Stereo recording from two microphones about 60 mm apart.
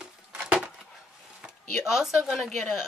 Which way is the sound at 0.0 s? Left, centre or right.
Centre.